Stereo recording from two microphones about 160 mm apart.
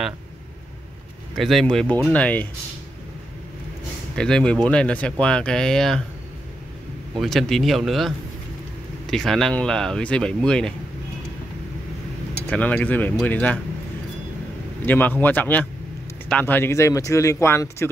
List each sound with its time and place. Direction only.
1.3 s speech: centre (ahead or behind)
4.1 s speech: 5° left (ahead or behind)
7.2 s speech: centre (ahead or behind)
12.4 s speech: 10° left (ahead or behind)
14.9 s speech: 10° left (ahead or behind)